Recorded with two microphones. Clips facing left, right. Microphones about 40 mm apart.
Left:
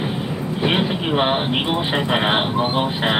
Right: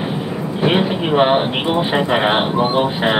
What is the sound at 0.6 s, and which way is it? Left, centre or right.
Speech, centre.